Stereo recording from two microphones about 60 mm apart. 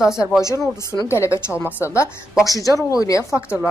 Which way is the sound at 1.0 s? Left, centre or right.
Left.